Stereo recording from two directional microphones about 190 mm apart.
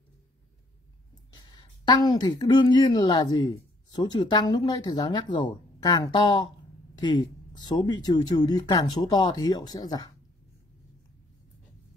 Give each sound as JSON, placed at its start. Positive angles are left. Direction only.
{"t": 1.3, "sound": "a woman's voice", "side_deg": 25}
{"t": 7.5, "sound": "speech", "side_deg": 20}